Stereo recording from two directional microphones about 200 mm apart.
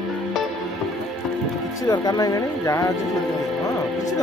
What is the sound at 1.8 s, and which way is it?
Speech, 20° left (ahead or behind).